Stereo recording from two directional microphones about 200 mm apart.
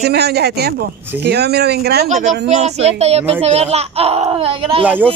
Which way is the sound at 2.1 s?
35° right (ahead or behind).